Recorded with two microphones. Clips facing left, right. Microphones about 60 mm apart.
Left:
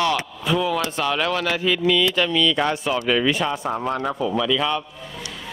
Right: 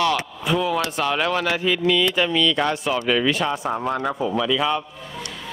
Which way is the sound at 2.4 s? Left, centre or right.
Centre.